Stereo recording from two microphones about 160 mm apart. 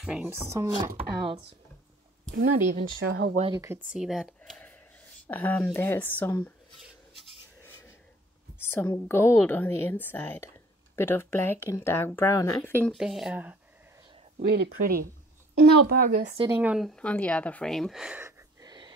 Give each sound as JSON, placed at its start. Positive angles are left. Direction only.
{"t": 0.0, "sound": "speech", "side_deg": -5}
{"t": 0.5, "sound": "speech", "side_deg": -25}
{"t": 2.8, "sound": "speech", "side_deg": -80}
{"t": 3.5, "sound": "speech", "side_deg": -15}
{"t": 3.9, "sound": "speech", "side_deg": -5}
{"t": 4.4, "sound": "a sound", "side_deg": 10}
{"t": 5.2, "sound": "a woman's voice", "side_deg": 10}
{"t": 8.5, "sound": "a woman's voice", "side_deg": 15}
{"t": 12.9, "sound": "speech", "side_deg": 0}
{"t": 14.5, "sound": "speech", "side_deg": -80}
{"t": 15.5, "sound": "speech", "side_deg": -80}
{"t": 16.5, "sound": "speech", "side_deg": -5}
{"t": 18.6, "sound": "a sound", "side_deg": -25}